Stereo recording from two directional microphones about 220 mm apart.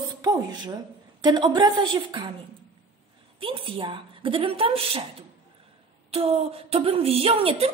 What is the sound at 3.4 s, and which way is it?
A woman's voice, 25° right (ahead or behind).